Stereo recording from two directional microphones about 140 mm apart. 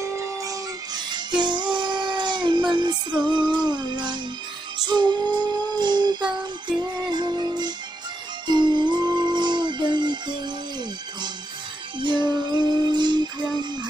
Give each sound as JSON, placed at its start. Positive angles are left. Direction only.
{"t": 0.0, "sound": "music", "side_deg": -20}
{"t": 1.1, "sound": "music", "side_deg": -30}
{"t": 12.0, "sound": "music", "side_deg": -35}